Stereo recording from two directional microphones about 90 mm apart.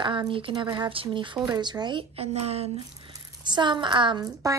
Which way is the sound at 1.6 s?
55° right (ahead or behind).